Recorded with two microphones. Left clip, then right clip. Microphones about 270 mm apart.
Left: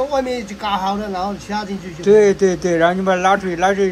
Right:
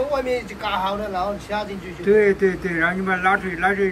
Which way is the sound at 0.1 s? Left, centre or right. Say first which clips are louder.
Left 2 dB; left.